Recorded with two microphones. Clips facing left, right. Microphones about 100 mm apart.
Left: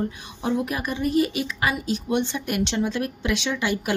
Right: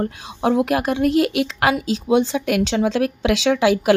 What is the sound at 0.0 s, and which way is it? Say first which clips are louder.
A woman's voice: right 6 dB; 85° right.